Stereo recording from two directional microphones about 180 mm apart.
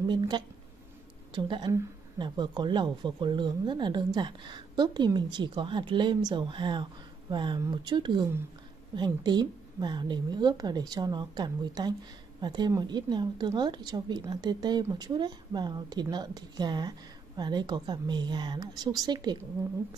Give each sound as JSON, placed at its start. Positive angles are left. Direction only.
{"t": 1.3, "sound": "speech", "side_deg": -25}